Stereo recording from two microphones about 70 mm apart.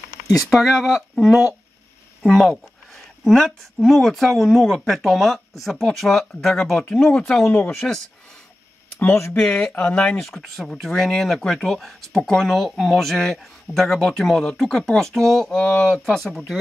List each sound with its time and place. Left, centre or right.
0.5 s speech: centre
9.3 s speech: centre
9.8 s speech: centre
10.2 s speech: centre